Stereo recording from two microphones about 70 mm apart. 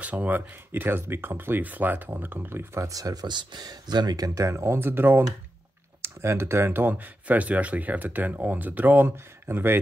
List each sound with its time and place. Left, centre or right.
0.0 s speech: right
2.8 s speech: right
4.4 s speech: right